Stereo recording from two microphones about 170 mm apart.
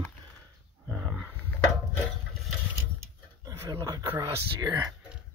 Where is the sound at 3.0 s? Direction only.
20° right (ahead or behind).